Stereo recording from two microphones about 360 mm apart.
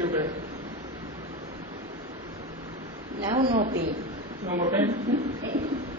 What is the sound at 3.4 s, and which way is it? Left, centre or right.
A man's voice, centre.